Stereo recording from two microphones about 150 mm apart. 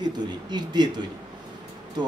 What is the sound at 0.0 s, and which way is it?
Speech, 30° right (ahead or behind).